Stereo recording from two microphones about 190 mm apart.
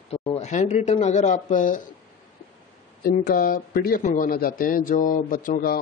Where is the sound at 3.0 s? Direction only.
50° left (ahead or behind).